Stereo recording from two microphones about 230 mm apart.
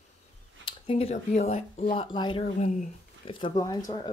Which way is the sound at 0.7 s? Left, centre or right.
Left.